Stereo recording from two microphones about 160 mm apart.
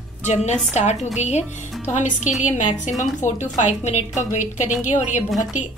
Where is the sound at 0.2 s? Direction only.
45° left (ahead or behind).